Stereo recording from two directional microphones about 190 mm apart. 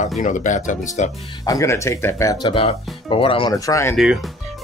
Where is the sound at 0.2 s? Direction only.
40° left (ahead or behind).